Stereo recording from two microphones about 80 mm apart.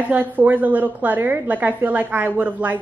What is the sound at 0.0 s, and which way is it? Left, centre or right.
A woman's voice, right.